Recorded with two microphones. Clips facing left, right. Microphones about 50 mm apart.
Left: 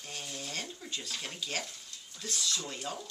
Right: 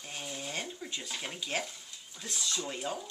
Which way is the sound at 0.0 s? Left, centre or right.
Centre.